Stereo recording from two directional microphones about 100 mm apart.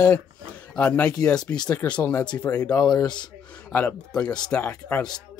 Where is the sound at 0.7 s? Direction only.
15° left (ahead or behind).